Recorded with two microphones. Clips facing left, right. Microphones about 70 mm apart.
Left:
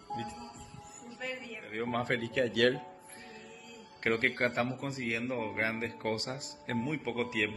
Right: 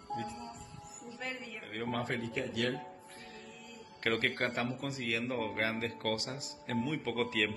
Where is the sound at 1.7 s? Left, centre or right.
Left.